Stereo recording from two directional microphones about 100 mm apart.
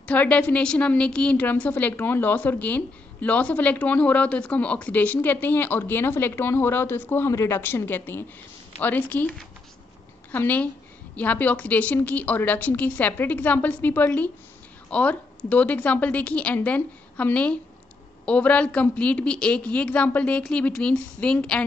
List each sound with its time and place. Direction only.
0.0 s a woman's voice: 15° left (ahead or behind)
10.3 s a woman's voice: 15° left (ahead or behind)